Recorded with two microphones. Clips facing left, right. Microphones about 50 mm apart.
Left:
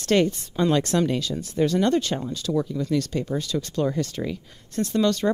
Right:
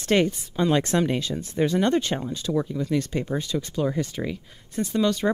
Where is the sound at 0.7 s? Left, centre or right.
Right.